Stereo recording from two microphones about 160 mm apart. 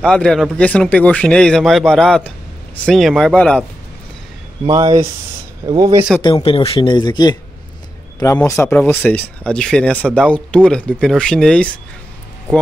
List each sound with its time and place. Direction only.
0.0 s a man's voice: 5° left (ahead or behind)
5.7 s speech: 25° right (ahead or behind)
6.2 s a man's voice: 30° left (ahead or behind); by 11.8 s 5° left (ahead or behind)